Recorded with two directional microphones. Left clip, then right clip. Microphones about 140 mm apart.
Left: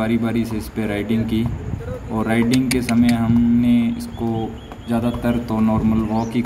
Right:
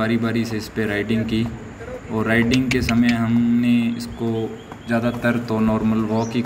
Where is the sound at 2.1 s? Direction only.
5° left (ahead or behind).